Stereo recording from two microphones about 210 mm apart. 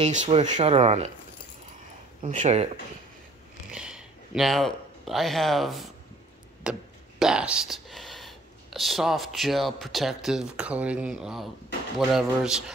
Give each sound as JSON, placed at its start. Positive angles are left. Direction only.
{"t": 0.0, "sound": "speech", "side_deg": -35}
{"t": 2.2, "sound": "speech", "side_deg": -35}
{"t": 3.7, "sound": "a man's voice", "side_deg": -5}